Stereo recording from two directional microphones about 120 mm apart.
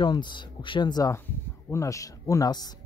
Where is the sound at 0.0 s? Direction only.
40° left (ahead or behind).